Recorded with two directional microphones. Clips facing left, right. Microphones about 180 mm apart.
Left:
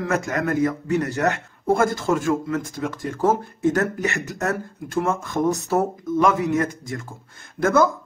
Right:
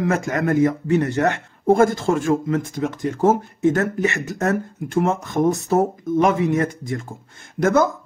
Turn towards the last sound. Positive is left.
turn(degrees=-20)  # may be behind; listen again after turning